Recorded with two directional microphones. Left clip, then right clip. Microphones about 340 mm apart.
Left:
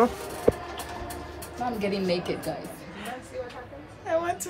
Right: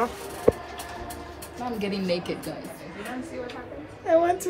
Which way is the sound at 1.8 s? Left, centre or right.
Centre.